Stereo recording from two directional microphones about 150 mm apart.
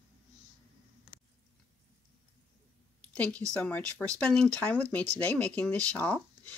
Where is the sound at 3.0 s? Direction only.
10° left (ahead or behind).